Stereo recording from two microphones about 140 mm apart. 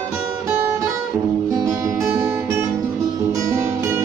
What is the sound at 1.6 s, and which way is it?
Guitar, 20° right (ahead or behind).